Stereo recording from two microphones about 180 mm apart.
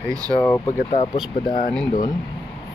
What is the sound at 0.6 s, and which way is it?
Speech, 35° left (ahead or behind).